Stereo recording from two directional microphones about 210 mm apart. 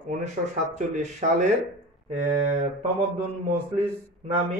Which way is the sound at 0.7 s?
35° right (ahead or behind).